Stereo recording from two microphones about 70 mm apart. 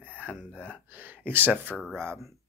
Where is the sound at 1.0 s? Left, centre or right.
Right.